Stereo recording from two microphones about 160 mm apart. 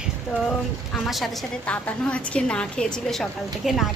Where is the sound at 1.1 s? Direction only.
5° left (ahead or behind).